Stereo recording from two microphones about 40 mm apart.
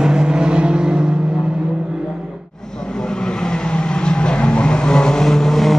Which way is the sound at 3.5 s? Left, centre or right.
Left.